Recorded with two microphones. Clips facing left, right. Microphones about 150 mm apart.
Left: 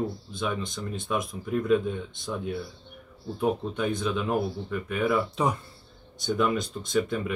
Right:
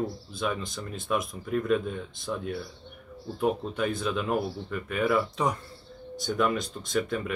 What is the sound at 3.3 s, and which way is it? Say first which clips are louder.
Speech: left 1 dB; centre (ahead or behind).